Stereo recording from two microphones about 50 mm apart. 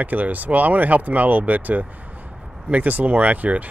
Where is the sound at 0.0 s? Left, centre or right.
Right.